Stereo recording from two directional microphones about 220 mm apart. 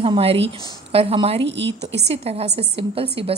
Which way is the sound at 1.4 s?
55° right (ahead or behind).